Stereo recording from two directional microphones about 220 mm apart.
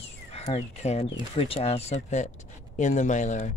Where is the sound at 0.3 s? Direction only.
30° left (ahead or behind).